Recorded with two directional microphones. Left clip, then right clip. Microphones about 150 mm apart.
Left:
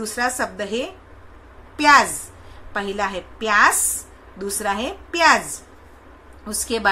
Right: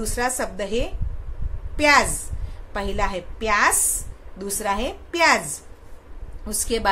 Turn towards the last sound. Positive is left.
turn(degrees=-15)  # may be behind; listen again after turning